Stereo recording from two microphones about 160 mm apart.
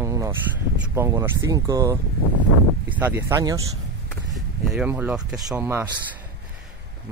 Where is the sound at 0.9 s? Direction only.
15° right (ahead or behind).